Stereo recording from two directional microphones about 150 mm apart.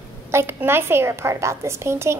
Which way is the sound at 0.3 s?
15° right (ahead or behind).